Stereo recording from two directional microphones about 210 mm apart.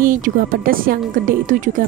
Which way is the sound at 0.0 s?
40° right (ahead or behind).